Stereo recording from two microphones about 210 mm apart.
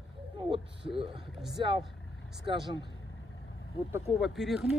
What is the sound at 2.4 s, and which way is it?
Speech, 20° right (ahead or behind).